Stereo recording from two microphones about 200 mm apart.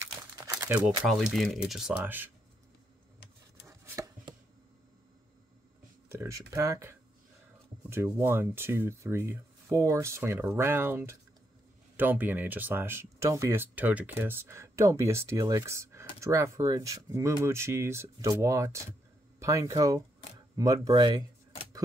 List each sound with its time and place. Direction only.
0.0 s crumpling: 15° right (ahead or behind)
0.7 s speech: centre (ahead or behind)
3.6 s chopping: 15° right (ahead or behind)
6.0 s a sound: 15° right (ahead or behind)
6.5 s speech: 15° right (ahead or behind)